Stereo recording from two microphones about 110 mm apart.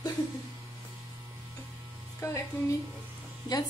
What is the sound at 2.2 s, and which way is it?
Speech, 30° left (ahead or behind).